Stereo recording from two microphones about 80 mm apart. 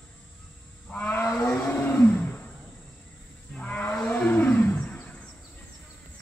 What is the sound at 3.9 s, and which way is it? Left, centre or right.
Wild animals, centre.